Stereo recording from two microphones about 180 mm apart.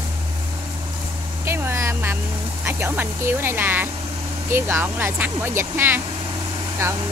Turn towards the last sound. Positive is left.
turn(degrees=-15)  # may be behind; listen again after turning